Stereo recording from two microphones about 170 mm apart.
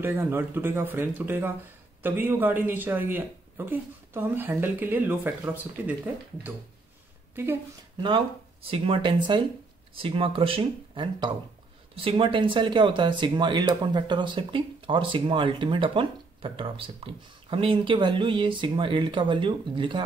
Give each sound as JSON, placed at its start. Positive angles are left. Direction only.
{"t": 0.0, "sound": "speech", "side_deg": -15}
{"t": 7.4, "sound": "speech", "side_deg": -10}
{"t": 8.6, "sound": "speech", "side_deg": -35}